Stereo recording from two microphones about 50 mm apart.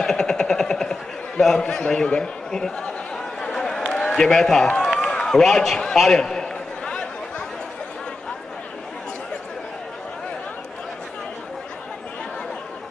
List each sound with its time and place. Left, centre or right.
0.0 s a sound: centre
1.6 s a man's voice: centre
3.3 s a sound: centre
3.9 s a man's voice: centre
5.0 s run: centre
5.9 s a man's voice: centre
6.9 s chatter: centre